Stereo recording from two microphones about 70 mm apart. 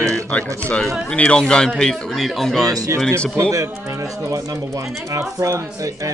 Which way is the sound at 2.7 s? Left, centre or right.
Right.